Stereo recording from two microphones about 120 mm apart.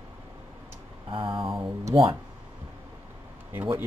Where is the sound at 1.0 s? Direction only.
45° right (ahead or behind).